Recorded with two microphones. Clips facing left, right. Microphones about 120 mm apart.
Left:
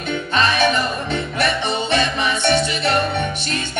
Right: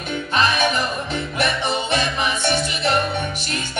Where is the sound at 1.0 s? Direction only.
30° left (ahead or behind).